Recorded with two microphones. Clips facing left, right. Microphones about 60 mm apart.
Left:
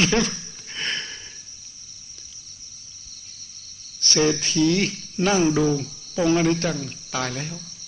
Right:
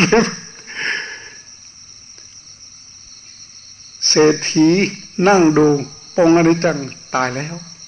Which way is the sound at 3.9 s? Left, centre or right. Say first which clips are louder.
Right 9 dB; right.